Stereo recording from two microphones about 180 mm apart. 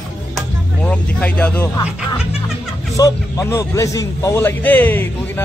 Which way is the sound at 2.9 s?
20° left (ahead or behind).